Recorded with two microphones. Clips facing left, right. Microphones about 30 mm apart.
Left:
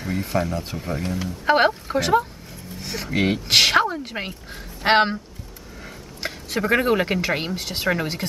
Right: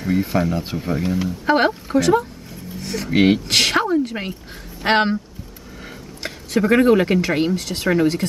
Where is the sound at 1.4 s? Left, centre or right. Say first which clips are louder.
Even; centre.